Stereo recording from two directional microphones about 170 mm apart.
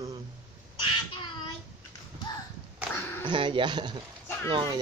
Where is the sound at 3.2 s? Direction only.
30° right (ahead or behind).